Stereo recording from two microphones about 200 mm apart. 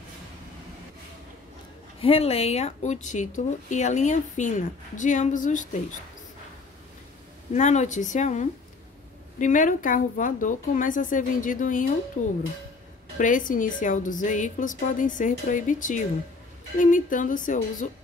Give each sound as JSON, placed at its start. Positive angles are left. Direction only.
{"t": 2.0, "sound": "speech", "side_deg": 30}
{"t": 7.5, "sound": "speech", "side_deg": 35}
{"t": 13.2, "sound": "speech", "side_deg": 40}